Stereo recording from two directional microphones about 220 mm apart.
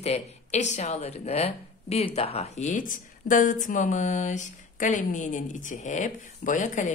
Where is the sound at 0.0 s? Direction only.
30° left (ahead or behind).